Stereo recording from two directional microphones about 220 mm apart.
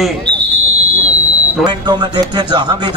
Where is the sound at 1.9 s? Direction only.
20° right (ahead or behind).